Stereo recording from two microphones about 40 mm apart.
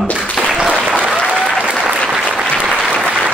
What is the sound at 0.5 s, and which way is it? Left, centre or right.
Applause, right.